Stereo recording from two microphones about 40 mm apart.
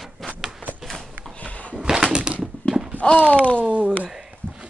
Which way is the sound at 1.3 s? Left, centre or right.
Left.